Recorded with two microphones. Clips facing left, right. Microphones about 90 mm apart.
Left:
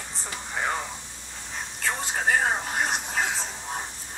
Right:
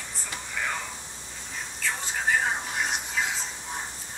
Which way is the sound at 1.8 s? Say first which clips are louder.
Left 3 dB; 50° left (ahead or behind).